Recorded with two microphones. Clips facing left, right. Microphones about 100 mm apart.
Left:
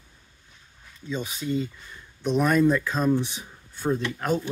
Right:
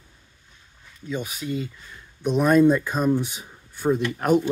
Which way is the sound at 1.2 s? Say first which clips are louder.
Left 1 dB; 25° left (ahead or behind).